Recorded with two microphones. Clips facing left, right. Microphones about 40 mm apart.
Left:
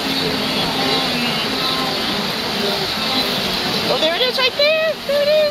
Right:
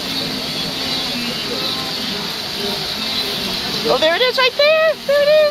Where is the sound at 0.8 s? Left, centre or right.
Left.